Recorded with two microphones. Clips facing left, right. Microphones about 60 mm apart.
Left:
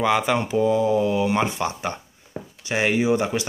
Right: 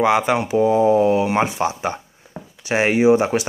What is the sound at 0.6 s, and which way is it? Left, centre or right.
Speech, right.